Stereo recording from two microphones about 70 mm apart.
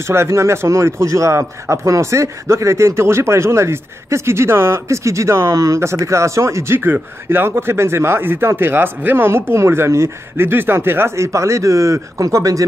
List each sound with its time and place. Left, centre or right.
0.1 s speech: right
11.3 s speech: right